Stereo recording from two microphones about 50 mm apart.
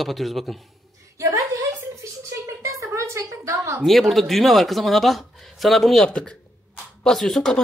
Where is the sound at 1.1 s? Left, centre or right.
Right.